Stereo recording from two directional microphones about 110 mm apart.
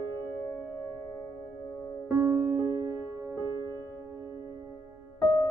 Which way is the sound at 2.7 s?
35° right (ahead or behind).